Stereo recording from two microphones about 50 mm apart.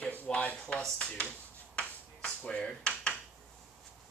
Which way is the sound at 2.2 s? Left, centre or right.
Centre.